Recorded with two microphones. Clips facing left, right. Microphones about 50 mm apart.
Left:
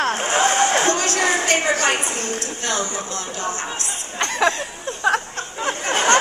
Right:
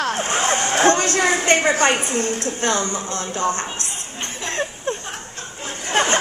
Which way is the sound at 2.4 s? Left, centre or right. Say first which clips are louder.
Right 3 dB; right.